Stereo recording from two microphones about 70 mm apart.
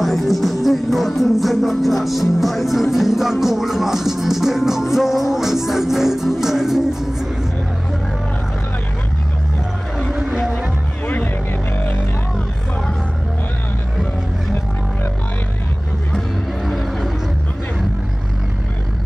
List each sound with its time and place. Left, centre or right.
0.0 s music: centre
10.2 s music: centre
16.6 s vehicle: centre